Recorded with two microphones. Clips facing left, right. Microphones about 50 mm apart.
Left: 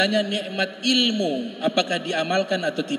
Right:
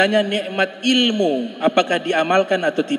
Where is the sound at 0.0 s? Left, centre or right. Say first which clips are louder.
Right 5 dB; right.